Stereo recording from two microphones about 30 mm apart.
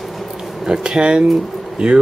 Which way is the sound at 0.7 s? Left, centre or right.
Right.